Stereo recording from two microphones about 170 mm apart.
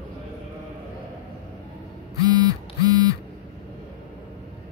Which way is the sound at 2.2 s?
20° right (ahead or behind).